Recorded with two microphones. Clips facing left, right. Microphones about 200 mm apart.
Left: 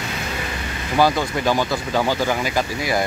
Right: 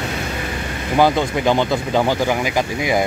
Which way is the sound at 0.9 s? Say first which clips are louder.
Right 2 dB; 20° right (ahead or behind).